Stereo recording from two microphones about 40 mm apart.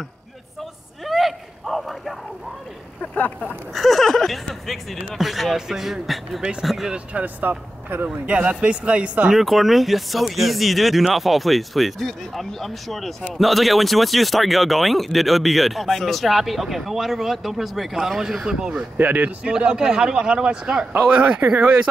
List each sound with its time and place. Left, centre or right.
1.0 s a sound: centre
3.2 s speech: left
3.7 s speech: centre
7.2 s speech: right
8.3 s speech: right
9.3 s speech: centre
21.1 s speech: right
21.5 s speech: right